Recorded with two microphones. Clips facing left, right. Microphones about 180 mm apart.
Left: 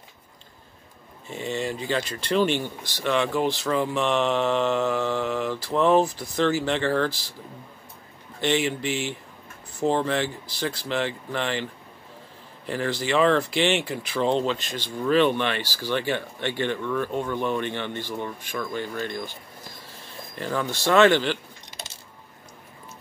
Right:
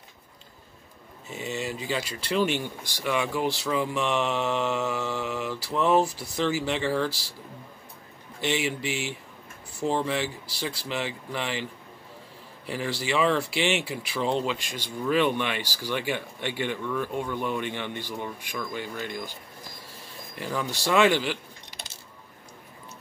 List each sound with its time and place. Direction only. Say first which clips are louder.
1.3 s speech: left 3 dB; 5° right (ahead or behind)
8.4 s speech: left 4 dB; 10° right (ahead or behind)
12.6 s speech: left 3 dB; 10° right (ahead or behind)
20.3 s speech: left 3 dB; 10° right (ahead or behind)